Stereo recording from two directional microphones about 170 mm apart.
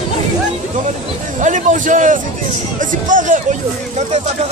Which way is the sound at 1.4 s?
50° right (ahead or behind).